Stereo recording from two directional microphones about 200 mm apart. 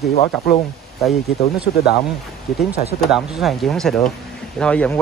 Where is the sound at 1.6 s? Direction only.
55° left (ahead or behind).